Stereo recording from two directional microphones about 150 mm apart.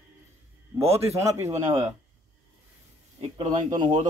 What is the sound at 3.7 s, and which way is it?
Speech, 25° right (ahead or behind).